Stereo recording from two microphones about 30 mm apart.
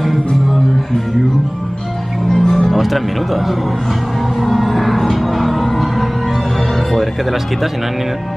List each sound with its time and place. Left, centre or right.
2.2 s music: centre
2.5 s speech: centre
4.4 s music: centre